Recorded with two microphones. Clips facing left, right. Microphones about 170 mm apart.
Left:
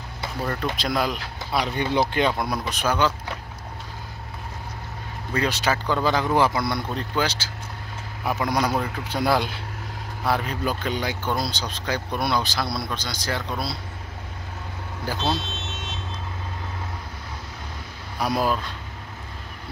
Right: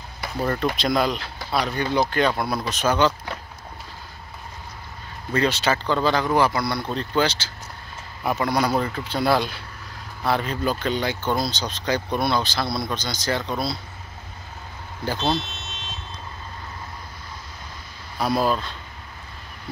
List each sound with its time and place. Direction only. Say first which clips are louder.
0.7 s speech: right 3 dB; 5° left (ahead or behind)
2.8 s speech: right 3 dB; 5° left (ahead or behind)
5.3 s speech: right 2 dB; 10° left (ahead or behind)
6.9 s speech: right 3 dB; 10° left (ahead or behind)
15.0 s speech: right 2 dB; 10° left (ahead or behind)
18.2 s speech: right 2 dB; 10° left (ahead or behind)